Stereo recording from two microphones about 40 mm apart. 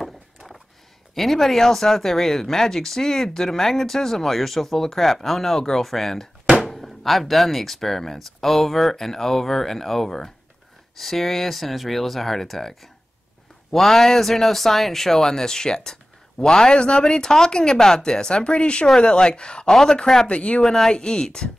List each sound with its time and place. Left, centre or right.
1.1 s speech: centre; by 17.1 s left
17.1 s speech: centre
19.6 s speech: centre
20.2 s speech: left
20.6 s speech: centre